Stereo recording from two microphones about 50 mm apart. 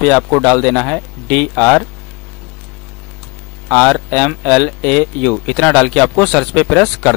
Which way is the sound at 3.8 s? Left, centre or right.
Centre.